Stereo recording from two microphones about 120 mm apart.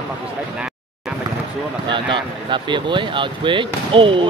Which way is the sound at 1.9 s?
45° right (ahead or behind).